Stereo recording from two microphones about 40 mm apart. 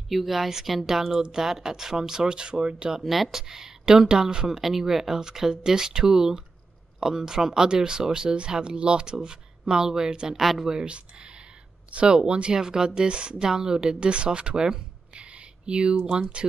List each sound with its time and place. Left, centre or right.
0.1 s a woman's voice: centre; by 3.0 s right
3.0 s speech: centre
4.5 s speech: centre
10.4 s a woman's voice: centre
10.9 s speech: right
13.5 s speech: centre
15.1 s a sound: right
16.1 s speech: right